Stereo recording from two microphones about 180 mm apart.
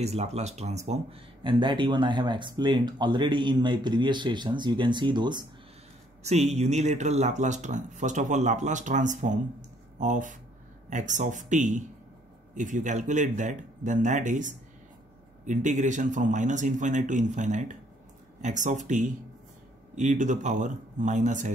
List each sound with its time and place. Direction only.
0.0 s speech: 35° right (ahead or behind)
6.2 s speech: 35° right (ahead or behind)